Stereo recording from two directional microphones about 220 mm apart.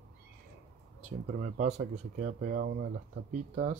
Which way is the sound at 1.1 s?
35° right (ahead or behind).